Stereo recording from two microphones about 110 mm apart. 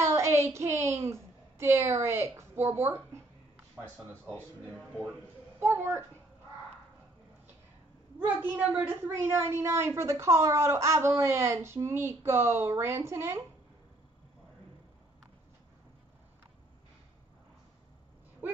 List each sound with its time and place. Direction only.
0.0 s child singing: 25° right (ahead or behind)
2.7 s a woman's voice: 25° right (ahead or behind)
3.8 s speech: 15° left (ahead or behind)
5.6 s a woman's voice: 25° right (ahead or behind)
8.4 s a woman's voice: 15° right (ahead or behind)